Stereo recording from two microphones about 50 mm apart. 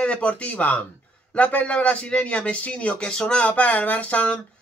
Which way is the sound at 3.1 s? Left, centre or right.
Centre.